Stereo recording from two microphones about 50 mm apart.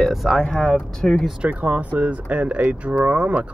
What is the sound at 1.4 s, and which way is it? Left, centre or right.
Speech, right.